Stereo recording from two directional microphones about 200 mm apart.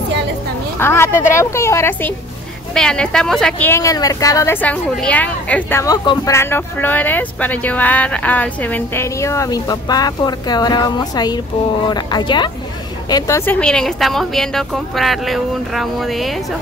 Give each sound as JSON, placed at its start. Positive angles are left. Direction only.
{"t": 0.7, "sound": "a woman's voice", "side_deg": 10}